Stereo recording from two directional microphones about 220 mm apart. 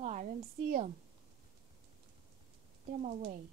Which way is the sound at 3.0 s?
35° right (ahead or behind).